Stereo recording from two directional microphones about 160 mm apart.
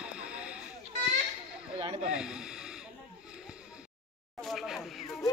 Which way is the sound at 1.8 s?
30° right (ahead or behind).